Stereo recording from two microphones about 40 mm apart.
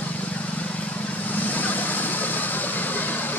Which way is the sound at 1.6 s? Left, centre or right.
Left.